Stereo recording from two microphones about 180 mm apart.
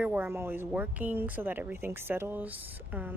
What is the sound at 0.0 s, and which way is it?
Speech, 10° right (ahead or behind).